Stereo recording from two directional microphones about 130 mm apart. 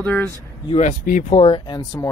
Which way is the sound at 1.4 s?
40° left (ahead or behind).